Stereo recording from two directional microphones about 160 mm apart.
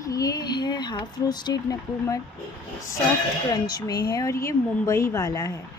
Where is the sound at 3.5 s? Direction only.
25° left (ahead or behind).